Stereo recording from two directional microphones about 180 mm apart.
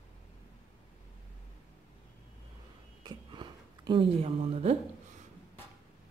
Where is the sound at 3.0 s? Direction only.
25° right (ahead or behind).